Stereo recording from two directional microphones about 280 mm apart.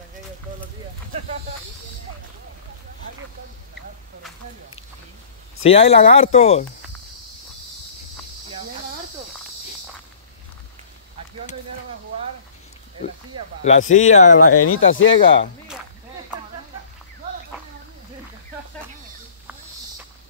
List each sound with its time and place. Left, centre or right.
5.6 s speech: left
13.7 s speech: left
14.4 s speech: left